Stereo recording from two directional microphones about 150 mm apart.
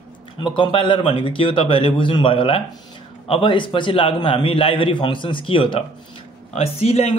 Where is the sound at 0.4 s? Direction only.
35° left (ahead or behind).